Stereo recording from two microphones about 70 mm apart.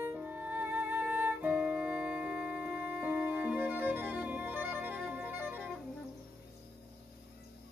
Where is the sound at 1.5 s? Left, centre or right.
Centre; by 4.9 s right.